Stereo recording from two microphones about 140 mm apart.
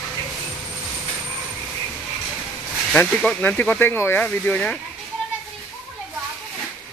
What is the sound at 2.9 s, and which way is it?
Speech, 5° left (ahead or behind).